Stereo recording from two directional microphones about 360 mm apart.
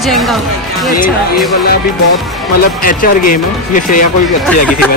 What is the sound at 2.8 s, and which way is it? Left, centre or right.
Speech, left.